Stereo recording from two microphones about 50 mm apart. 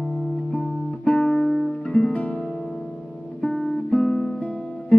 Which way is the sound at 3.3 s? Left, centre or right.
Left.